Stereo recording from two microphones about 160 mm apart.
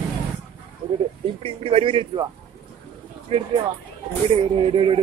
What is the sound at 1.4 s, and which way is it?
Speech, 35° right (ahead or behind).